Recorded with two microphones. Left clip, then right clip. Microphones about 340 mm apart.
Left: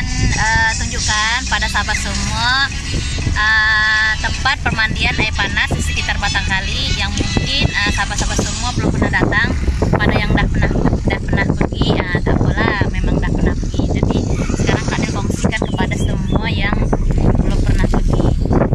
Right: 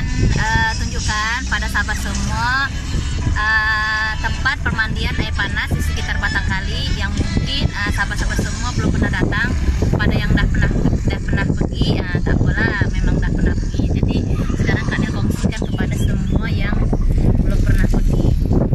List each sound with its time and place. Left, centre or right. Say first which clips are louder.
0.4 s music: left 3 dB; centre
1.2 s speech: left 2 dB; centre
9.8 s vehicle: left 5 dB; left
11.4 s speech: left 4 dB; left
16.7 s a sound: left 4 dB; left